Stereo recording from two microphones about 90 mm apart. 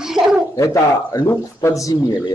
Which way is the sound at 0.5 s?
40° left (ahead or behind).